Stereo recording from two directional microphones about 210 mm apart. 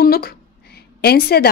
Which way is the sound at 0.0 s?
45° left (ahead or behind).